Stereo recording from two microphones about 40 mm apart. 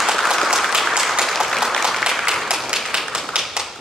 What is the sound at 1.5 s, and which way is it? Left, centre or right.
Applause, centre.